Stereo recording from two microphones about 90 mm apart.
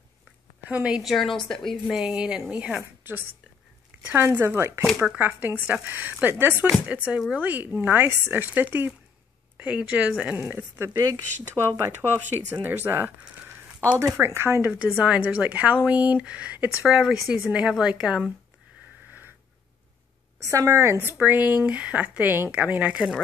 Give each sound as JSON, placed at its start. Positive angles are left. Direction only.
{"t": 0.7, "sound": "a woman's voice", "side_deg": -10}
{"t": 1.1, "sound": "a woman's voice", "side_deg": 5}
{"t": 1.9, "sound": "a woman's voice", "side_deg": -10}
{"t": 3.0, "sound": "a sound", "side_deg": -25}
{"t": 4.0, "sound": "speech", "side_deg": -20}
{"t": 4.8, "sound": "a woman's voice", "side_deg": -5}
{"t": 5.2, "sound": "a woman's voice", "side_deg": -20}
{"t": 10.3, "sound": "speech", "side_deg": -25}
{"t": 13.2, "sound": "a sound", "side_deg": -20}
{"t": 13.9, "sound": "speech", "side_deg": -30}
{"t": 14.6, "sound": "a woman's voice", "side_deg": -15}
{"t": 20.4, "sound": "a woman's voice", "side_deg": -35}